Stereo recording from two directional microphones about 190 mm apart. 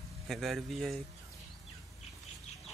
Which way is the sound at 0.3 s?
Centre (ahead or behind).